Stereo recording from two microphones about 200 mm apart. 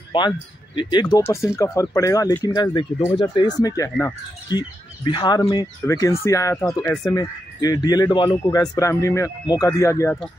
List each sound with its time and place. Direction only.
0.1 s speech: 25° left (ahead or behind)